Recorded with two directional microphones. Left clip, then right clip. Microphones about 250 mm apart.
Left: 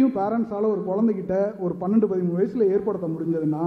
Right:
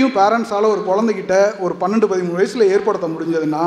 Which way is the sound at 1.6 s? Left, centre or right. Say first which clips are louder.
Right 7 dB; centre.